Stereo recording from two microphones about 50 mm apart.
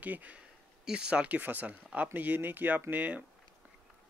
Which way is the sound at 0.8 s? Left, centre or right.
Centre.